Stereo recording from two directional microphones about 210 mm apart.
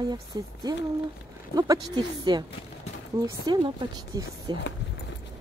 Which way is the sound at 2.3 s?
20° right (ahead or behind).